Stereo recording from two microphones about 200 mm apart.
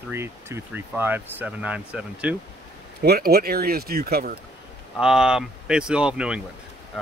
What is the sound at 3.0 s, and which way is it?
Speech, 50° right (ahead or behind).